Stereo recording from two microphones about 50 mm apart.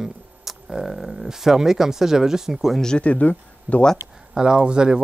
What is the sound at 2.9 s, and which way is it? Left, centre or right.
Speech, left.